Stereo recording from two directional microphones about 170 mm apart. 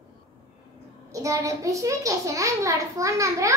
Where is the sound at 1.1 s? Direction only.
20° right (ahead or behind).